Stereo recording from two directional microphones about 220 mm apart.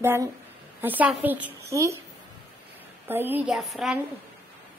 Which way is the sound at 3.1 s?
10° right (ahead or behind).